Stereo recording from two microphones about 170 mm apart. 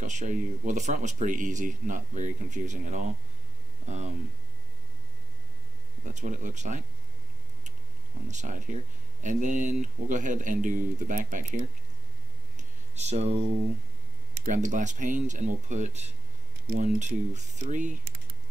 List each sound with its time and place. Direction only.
0.0 s speech: 45° right (ahead or behind)
6.0 s speech: 45° right (ahead or behind)
8.3 s speech: 45° right (ahead or behind)
12.5 s a sound: 40° right (ahead or behind)
14.4 s speech: 45° right (ahead or behind)